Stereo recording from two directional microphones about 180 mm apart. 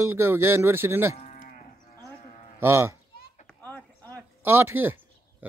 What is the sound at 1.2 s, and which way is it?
Moo, 40° left (ahead or behind).